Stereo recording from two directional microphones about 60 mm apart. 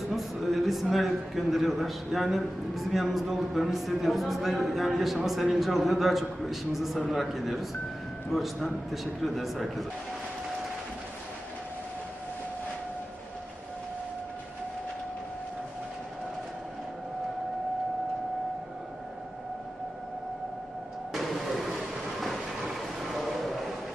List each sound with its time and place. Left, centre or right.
0.1 s a man's voice: centre
21.1 s vehicle: centre